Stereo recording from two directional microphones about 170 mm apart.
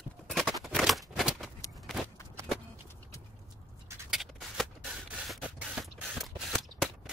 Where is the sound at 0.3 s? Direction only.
Centre (ahead or behind).